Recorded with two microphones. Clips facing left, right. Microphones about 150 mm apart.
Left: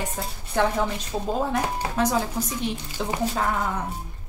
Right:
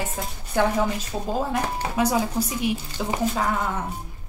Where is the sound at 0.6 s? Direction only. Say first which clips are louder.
Right 1 dB; 5° right (ahead or behind).